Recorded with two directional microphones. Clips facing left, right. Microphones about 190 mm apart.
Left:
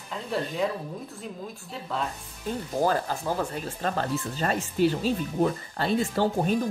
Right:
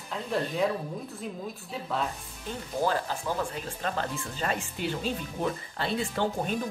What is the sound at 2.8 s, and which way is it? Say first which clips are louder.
Speech: left 3 dB; 45° left (ahead or behind).